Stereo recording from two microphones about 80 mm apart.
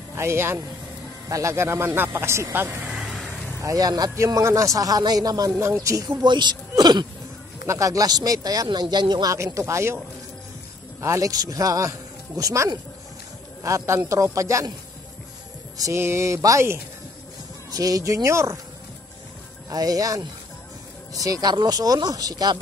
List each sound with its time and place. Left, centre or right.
0.1 s speech: right
2.9 s vehicle: centre
3.6 s speech: right
5.6 s speech: right
6.0 s speech: right
6.8 s a sound: right
7.6 s speech: right
9.3 s speech: right
11.0 s speech: right
15.9 s speech: right
17.6 s speech: right
19.7 s speech: right